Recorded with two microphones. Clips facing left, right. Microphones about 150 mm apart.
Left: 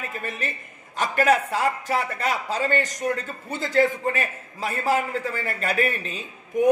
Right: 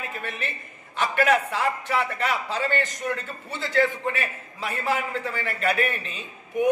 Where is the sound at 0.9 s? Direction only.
40° left (ahead or behind).